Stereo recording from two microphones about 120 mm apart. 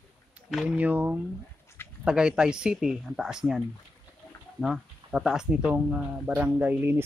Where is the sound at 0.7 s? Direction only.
15° right (ahead or behind).